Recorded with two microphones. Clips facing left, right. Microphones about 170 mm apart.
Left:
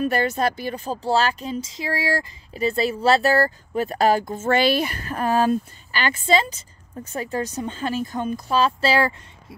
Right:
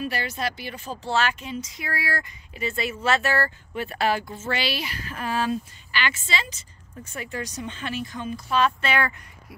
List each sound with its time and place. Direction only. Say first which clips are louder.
0.0 s speech: left 8 dB; 45° left (ahead or behind)
8.5 s speech: left 3 dB; 30° left (ahead or behind)